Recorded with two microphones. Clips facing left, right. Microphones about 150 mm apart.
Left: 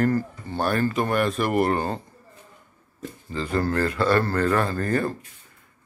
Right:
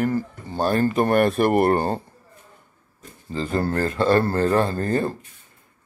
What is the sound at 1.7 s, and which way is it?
Speech, 35° right (ahead or behind).